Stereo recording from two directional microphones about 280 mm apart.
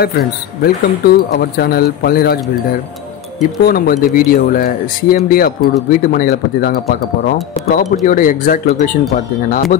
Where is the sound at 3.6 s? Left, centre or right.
Left.